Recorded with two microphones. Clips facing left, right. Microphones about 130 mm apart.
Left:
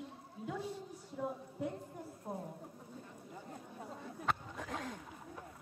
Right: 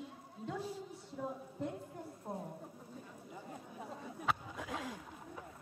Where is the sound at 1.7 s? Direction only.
Centre (ahead or behind).